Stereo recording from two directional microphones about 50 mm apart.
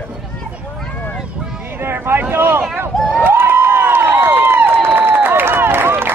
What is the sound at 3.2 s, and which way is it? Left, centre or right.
Crowd, right.